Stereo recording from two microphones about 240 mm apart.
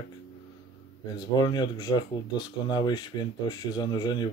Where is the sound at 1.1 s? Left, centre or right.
Centre.